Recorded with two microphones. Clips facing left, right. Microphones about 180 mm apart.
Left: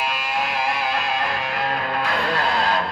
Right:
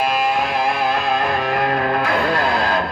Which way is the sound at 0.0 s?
50° right (ahead or behind).